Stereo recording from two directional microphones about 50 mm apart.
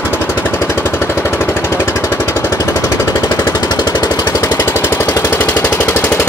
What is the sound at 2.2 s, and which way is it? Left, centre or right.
Jackhammer, left.